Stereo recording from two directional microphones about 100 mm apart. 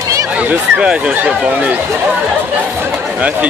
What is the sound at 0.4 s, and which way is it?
Speech, 15° right (ahead or behind).